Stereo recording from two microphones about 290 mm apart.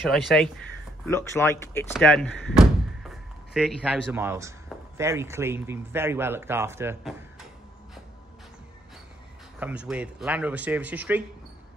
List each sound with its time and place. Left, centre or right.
0.0 s speech: centre
9.6 s speech: centre